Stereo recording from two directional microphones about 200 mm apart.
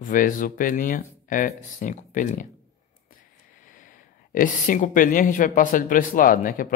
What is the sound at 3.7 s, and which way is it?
Speech, 40° left (ahead or behind).